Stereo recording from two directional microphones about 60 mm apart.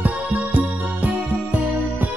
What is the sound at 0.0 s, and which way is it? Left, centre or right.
Music, right.